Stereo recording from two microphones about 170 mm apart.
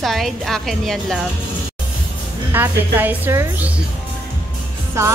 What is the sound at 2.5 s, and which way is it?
A woman's voice, 10° right (ahead or behind).